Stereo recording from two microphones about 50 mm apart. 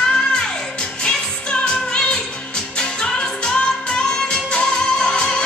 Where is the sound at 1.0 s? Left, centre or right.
Left.